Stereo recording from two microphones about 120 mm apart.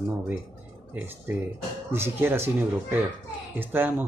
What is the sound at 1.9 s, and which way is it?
Speech, 20° right (ahead or behind).